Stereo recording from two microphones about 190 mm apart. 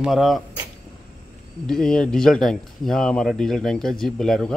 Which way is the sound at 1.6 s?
5° left (ahead or behind).